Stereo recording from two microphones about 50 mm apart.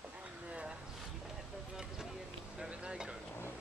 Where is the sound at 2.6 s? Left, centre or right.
Centre.